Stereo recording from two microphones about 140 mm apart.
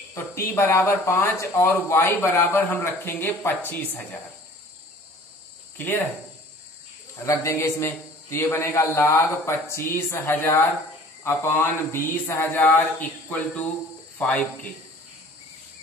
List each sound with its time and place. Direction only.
0.1 s speech: 20° left (ahead or behind)
5.8 s speech: 15° left (ahead or behind)
7.2 s a man's voice: 20° left (ahead or behind)